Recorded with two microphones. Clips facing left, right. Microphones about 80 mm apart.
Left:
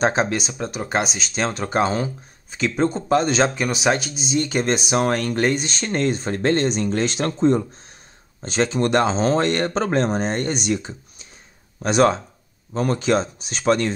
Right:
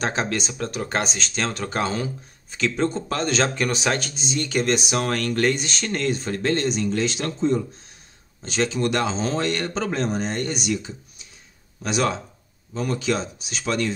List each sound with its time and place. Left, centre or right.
0.0 s speech: centre; by 7.6 s left
8.4 s speech: left